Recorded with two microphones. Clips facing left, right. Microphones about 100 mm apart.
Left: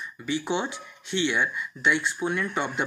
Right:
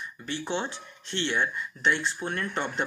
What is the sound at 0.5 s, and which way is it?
Speech, 10° left (ahead or behind).